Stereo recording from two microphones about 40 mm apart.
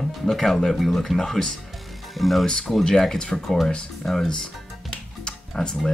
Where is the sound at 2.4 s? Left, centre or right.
Centre.